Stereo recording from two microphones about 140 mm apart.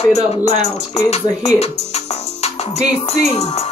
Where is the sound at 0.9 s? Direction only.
50° left (ahead or behind).